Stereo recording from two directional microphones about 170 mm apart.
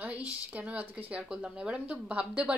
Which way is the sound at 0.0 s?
10° right (ahead or behind).